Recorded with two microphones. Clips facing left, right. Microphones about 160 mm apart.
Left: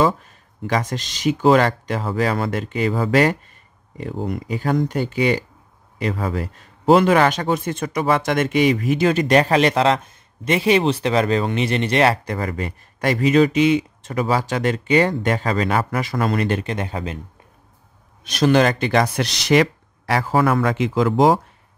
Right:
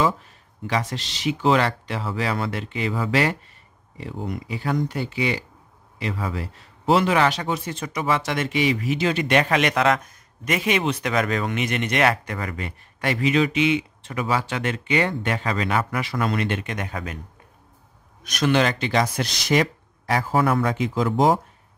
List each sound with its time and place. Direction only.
0.7 s speech: 45° left (ahead or behind); by 17.2 s 30° left (ahead or behind)
18.2 s speech: 30° left (ahead or behind); by 21.4 s 90° left